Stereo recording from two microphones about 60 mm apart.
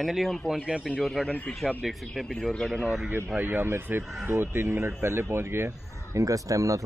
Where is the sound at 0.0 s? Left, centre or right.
Centre.